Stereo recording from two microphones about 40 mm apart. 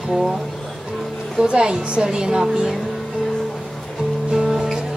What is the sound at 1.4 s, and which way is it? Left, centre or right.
A woman's voice, centre.